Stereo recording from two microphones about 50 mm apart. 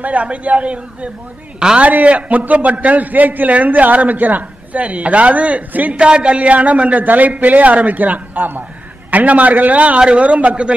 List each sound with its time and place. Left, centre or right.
0.0 s a man's voice: right